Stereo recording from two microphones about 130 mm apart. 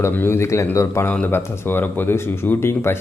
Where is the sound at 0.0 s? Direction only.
15° left (ahead or behind).